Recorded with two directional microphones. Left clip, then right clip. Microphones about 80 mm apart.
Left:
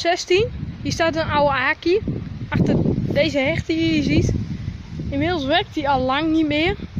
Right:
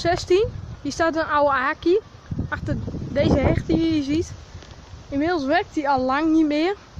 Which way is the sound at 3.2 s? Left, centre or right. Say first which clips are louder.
Even; left.